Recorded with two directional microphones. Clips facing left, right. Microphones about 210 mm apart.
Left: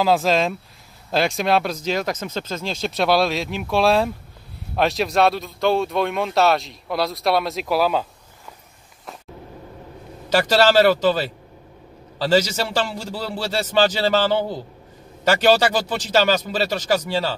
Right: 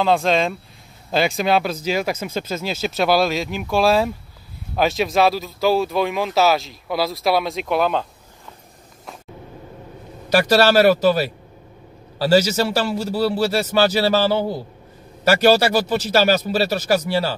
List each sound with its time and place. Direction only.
0.0 s speech: 5° left (ahead or behind)
10.3 s a man's voice: 10° right (ahead or behind)